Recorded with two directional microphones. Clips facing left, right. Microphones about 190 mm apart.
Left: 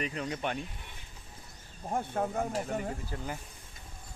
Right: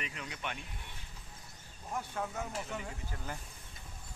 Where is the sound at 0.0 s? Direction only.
40° left (ahead or behind).